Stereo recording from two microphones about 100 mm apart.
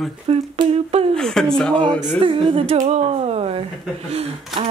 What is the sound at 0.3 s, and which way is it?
Speech, 75° right (ahead or behind).